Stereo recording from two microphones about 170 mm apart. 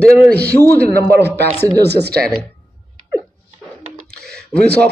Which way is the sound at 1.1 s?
75° right (ahead or behind).